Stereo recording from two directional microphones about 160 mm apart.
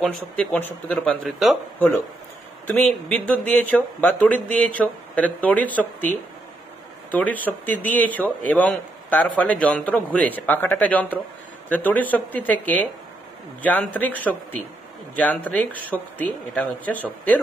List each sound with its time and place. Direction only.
0.0 s speech: 10° left (ahead or behind)
2.6 s a man's voice: 10° left (ahead or behind)